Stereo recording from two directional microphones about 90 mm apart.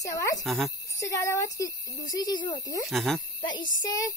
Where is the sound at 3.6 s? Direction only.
45° left (ahead or behind).